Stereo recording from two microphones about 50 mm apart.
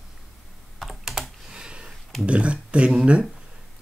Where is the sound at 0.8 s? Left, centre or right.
Centre.